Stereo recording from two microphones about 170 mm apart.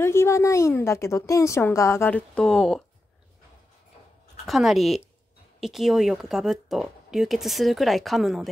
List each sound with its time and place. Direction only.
0.0 s a woman's voice: 15° left (ahead or behind)
4.5 s speech: centre (ahead or behind)